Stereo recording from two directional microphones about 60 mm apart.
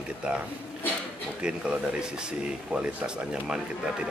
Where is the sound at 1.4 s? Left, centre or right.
Centre.